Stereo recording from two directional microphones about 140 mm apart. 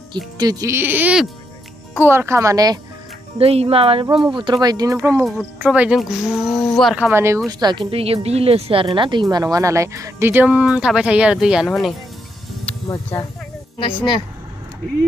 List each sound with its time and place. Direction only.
0.4 s speech: 25° right (ahead or behind)
3.3 s speech: 45° right (ahead or behind); by 5.2 s 25° right (ahead or behind)
5.2 s speech: 5° right (ahead or behind)
7.0 s speech: 15° right (ahead or behind)
7.4 s speech: 35° right (ahead or behind); by 11.9 s centre (ahead or behind)
12.8 s speech: 25° left (ahead or behind)
13.7 s a woman's voice: 35° left (ahead or behind)